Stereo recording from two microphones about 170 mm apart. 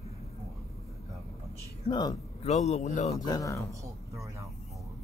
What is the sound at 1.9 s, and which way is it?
Speech, 25° left (ahead or behind).